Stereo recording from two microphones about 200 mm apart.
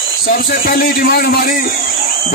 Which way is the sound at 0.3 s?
45° left (ahead or behind).